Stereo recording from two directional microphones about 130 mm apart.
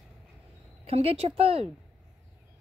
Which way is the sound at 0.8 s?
50° right (ahead or behind).